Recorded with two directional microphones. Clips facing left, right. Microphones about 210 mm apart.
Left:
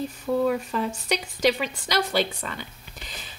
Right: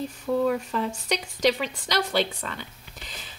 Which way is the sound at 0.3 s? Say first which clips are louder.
Even; 5° left (ahead or behind).